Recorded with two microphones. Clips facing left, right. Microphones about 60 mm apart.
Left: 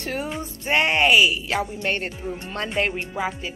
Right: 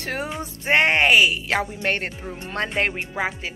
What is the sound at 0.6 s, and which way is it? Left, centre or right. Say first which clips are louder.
Speech: right 2 dB; right.